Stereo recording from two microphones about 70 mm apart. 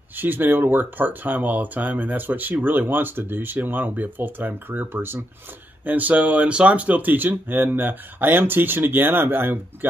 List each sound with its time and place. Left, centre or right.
0.1 s speech: right
5.9 s speech: right